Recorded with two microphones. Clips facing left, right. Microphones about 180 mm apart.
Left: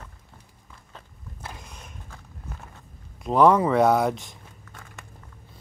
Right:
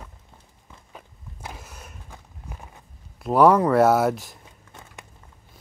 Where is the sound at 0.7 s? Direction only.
10° right (ahead or behind).